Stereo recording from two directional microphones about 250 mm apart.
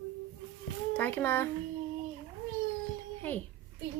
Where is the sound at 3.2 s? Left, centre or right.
Centre.